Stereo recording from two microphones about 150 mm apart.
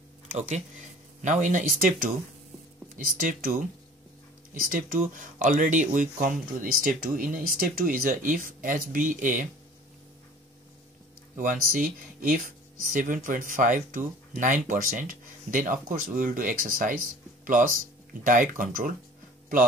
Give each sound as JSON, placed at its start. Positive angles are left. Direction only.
{"t": 0.3, "sound": "speech", "side_deg": -55}
{"t": 11.3, "sound": "speech", "side_deg": -65}